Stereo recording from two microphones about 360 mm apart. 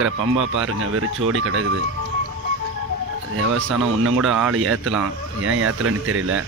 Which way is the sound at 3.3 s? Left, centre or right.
Right.